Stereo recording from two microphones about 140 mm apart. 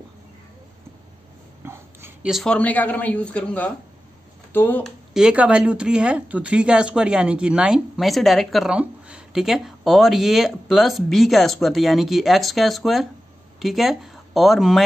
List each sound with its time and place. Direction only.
1.6 s a sound: 15° right (ahead or behind)
2.2 s speech: centre (ahead or behind)
4.8 s speech: 5° right (ahead or behind)